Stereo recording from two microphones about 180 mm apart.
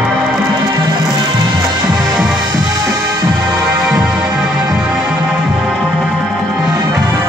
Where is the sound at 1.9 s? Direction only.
20° right (ahead or behind).